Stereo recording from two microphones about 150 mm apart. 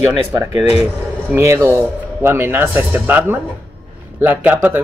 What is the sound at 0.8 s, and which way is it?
Speech, 15° right (ahead or behind).